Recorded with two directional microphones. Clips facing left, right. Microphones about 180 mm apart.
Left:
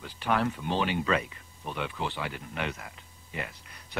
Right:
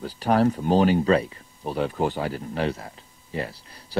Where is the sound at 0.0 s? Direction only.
40° right (ahead or behind).